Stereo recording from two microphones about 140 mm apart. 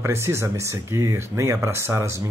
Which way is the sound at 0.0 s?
20° right (ahead or behind).